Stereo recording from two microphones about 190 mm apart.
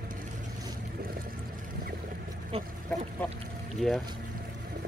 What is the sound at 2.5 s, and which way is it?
Speech, 30° right (ahead or behind).